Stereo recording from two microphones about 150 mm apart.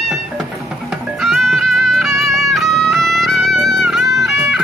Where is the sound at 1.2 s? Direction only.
Centre (ahead or behind).